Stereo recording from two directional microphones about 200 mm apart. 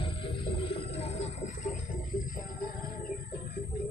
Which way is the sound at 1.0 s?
35° left (ahead or behind).